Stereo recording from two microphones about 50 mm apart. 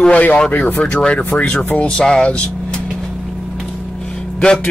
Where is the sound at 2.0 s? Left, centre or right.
Centre.